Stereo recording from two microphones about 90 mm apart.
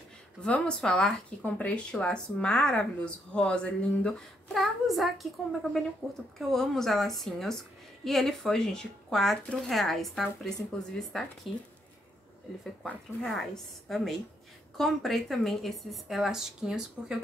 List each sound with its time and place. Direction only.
0.4 s a woman's voice: 10° left (ahead or behind)
12.8 s a woman's voice: 5° left (ahead or behind)